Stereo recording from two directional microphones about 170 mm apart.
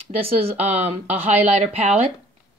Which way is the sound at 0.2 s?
35° right (ahead or behind).